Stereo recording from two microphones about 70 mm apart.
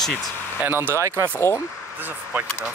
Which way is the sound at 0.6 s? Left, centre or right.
Right.